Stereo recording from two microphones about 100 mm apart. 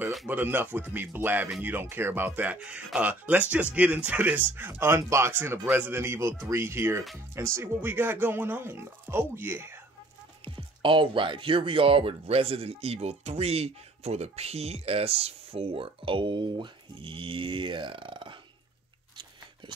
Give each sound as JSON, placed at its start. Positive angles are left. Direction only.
{"t": 0.3, "sound": "speech", "side_deg": -20}
{"t": 10.4, "sound": "speech", "side_deg": -60}